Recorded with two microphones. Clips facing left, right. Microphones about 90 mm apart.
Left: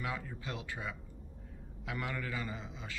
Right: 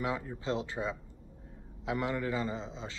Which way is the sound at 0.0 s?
25° right (ahead or behind).